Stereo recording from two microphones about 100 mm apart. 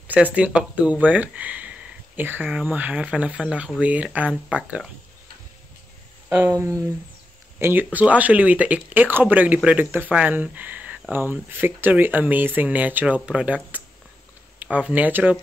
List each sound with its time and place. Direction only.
0.1 s speech: 15° right (ahead or behind)
6.2 s speech: 20° right (ahead or behind)
6.5 s speech: 30° right (ahead or behind)
7.5 s speech: 20° right (ahead or behind)